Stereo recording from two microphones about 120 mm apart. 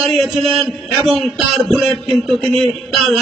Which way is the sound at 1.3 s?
Centre (ahead or behind).